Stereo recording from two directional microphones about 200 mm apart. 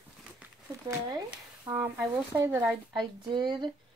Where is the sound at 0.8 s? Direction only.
20° right (ahead or behind).